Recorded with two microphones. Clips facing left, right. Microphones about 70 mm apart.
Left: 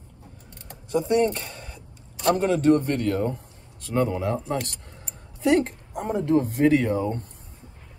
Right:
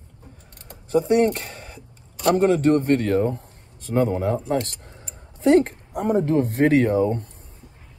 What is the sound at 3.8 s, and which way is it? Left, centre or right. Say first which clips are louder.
Speech: right 3 dB; right.